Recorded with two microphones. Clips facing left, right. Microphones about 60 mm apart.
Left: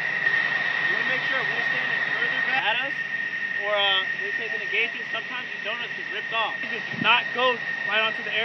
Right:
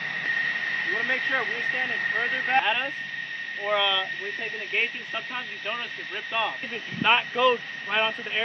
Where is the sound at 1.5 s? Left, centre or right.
Left.